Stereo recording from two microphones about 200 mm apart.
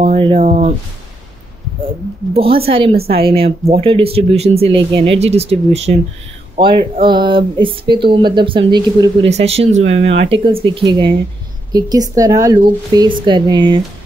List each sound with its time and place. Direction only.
0.0 s speech: 30° right (ahead or behind)
0.4 s a sound: 35° right (ahead or behind)
2.3 s speech: 30° right (ahead or behind)
9.3 s speech: 30° right (ahead or behind)